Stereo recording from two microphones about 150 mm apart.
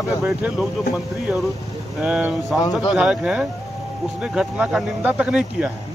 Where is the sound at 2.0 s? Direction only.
5° right (ahead or behind).